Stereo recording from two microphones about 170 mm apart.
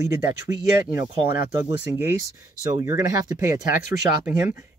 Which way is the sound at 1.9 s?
15° right (ahead or behind).